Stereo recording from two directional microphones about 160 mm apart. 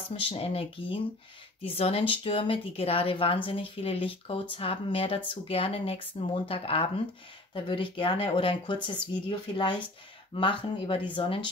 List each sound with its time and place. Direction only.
0.1 s speech: 35° left (ahead or behind)